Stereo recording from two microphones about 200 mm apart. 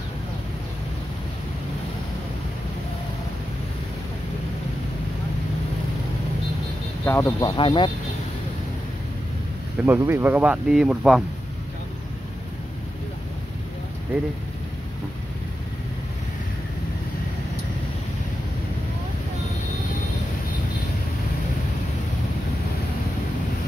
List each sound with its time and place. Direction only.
7.1 s speech: 10° left (ahead or behind)
9.8 s speech: 10° right (ahead or behind)